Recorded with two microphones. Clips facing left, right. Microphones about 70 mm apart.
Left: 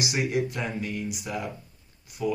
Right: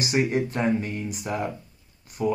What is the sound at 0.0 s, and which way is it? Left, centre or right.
Speech, right.